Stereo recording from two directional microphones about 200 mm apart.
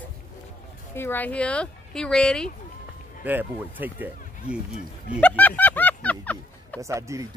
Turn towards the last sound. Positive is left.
turn(degrees=-15)  # may be behind; listen again after turning